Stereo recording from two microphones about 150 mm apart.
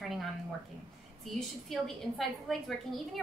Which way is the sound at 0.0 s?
Centre (ahead or behind).